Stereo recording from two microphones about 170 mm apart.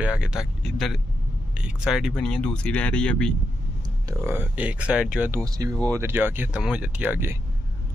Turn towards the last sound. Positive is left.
turn(degrees=-10)  # may be behind; listen again after turning